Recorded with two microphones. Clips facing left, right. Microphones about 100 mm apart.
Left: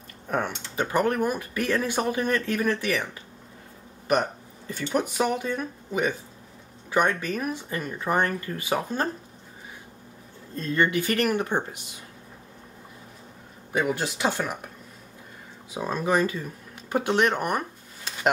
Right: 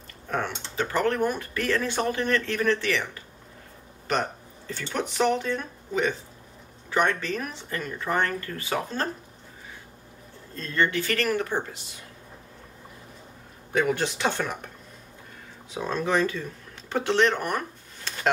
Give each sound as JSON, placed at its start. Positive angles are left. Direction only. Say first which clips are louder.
{"t": 0.3, "sound": "speech", "louder": "left 2 dB", "side_deg": 15}
{"t": 4.1, "sound": "speech", "louder": "left 3 dB", "side_deg": 10}
{"t": 10.5, "sound": "speech", "louder": "left 2 dB", "side_deg": 15}
{"t": 13.7, "sound": "speech", "louder": "right 1 dB", "side_deg": 10}
{"t": 15.7, "sound": "speech", "louder": "left 1 dB", "side_deg": 10}
{"t": 16.9, "sound": "a sound", "louder": "even", "side_deg": 15}